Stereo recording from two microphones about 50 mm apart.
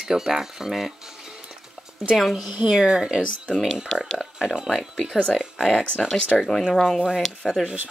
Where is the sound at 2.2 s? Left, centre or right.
Centre.